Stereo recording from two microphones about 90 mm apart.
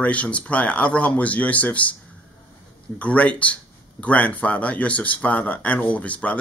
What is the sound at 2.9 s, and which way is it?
Speech, 15° left (ahead or behind).